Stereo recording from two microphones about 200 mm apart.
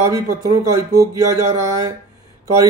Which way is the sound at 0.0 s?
15° right (ahead or behind).